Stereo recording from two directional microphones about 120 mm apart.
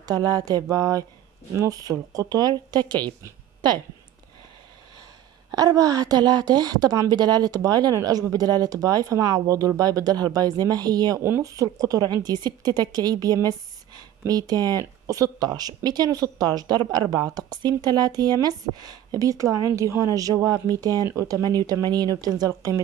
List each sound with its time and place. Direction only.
0.0 s a woman's voice: 30° right (ahead or behind)
5.5 s a woman's voice: 30° right (ahead or behind)
11.2 s speech: 20° right (ahead or behind)
11.5 s a woman's voice: 30° right (ahead or behind)